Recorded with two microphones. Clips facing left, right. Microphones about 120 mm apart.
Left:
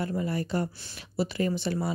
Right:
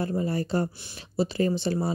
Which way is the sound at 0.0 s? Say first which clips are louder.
Right 3 dB; 30° right (ahead or behind).